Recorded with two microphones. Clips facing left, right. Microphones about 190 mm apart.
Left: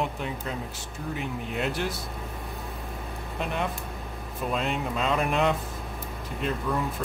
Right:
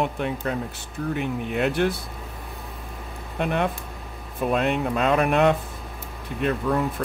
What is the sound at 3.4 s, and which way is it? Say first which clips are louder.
Speech: right 6 dB; 60° right (ahead or behind).